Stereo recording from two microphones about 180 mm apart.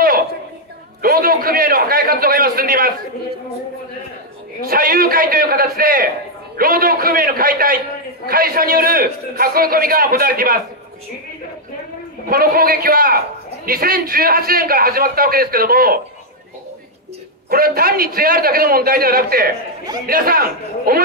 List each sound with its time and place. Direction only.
1.0 s a man's voice: 55° right (ahead or behind)
4.6 s a man's voice: 55° right (ahead or behind)
12.3 s a man's voice: 55° right (ahead or behind)
17.5 s a man's voice: 55° right (ahead or behind)